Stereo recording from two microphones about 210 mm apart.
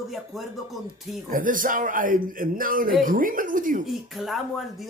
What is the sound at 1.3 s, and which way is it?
Speech, 40° right (ahead or behind).